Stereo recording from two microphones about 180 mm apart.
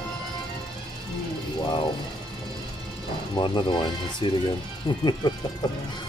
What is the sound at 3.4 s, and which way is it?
Speech, 25° left (ahead or behind).